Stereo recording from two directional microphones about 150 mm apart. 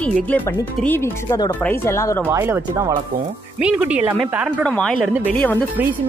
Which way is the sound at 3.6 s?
5° right (ahead or behind).